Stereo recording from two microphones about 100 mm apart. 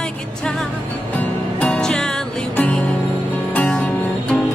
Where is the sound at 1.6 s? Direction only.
5° left (ahead or behind).